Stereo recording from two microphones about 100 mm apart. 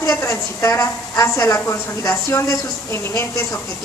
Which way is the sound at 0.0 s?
30° left (ahead or behind).